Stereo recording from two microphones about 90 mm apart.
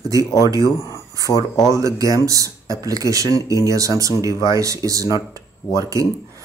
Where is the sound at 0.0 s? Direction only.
35° right (ahead or behind).